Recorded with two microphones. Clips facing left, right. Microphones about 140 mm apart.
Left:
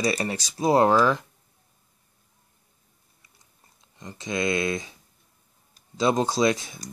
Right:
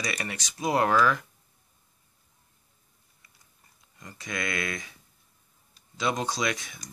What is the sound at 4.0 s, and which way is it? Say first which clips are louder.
Speech: left 7 dB; 25° left (ahead or behind).